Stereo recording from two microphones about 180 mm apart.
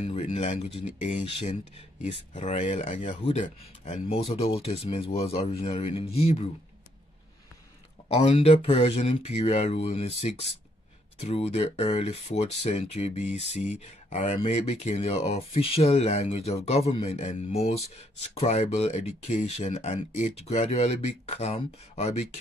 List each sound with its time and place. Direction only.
0.0 s speech: 35° left (ahead or behind)
8.2 s speech: 35° left (ahead or behind)